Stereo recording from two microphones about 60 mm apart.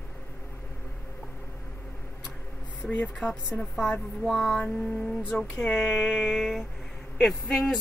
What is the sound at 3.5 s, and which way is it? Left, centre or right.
Speech, centre.